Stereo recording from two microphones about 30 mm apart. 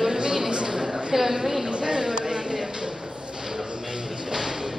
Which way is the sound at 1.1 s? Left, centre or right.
Centre.